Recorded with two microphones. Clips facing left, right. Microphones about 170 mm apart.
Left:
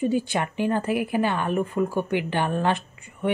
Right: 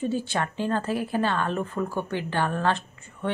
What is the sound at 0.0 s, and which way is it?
Speech, 15° left (ahead or behind).